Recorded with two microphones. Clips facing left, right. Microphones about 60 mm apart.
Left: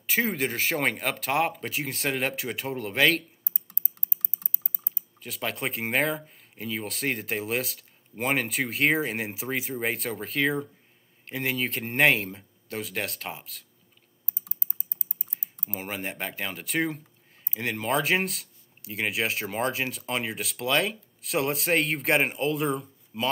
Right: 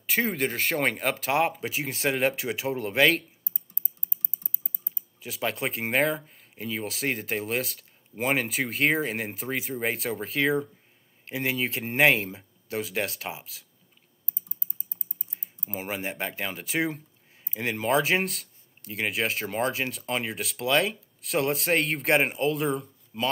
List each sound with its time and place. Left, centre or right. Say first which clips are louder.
0.0 s speech: even; centre
3.4 s typing: left 3 dB; left
5.2 s speech: right 2 dB; centre
14.3 s typing: left 3 dB; left
15.6 s speech: right 2 dB; centre